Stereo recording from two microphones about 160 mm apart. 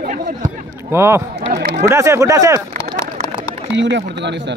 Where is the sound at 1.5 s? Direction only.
65° right (ahead or behind).